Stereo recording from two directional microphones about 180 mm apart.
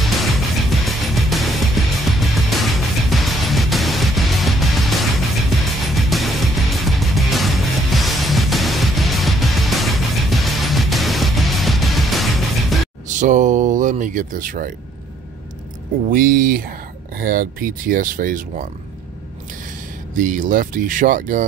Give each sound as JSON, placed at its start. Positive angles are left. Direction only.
{"t": 0.8, "sound": "music", "side_deg": 0}
{"t": 13.1, "sound": "speech", "side_deg": -45}
{"t": 16.1, "sound": "speech", "side_deg": -50}
{"t": 20.2, "sound": "speech", "side_deg": -50}